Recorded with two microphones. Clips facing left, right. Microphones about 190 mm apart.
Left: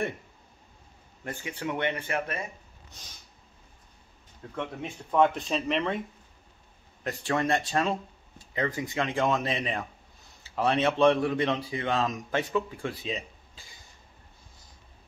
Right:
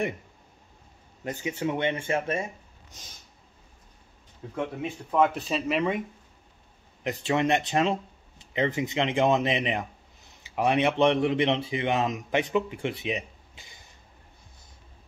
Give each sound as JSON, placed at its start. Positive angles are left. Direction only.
{"t": 1.2, "sound": "speech", "side_deg": -20}
{"t": 4.6, "sound": "speech", "side_deg": -5}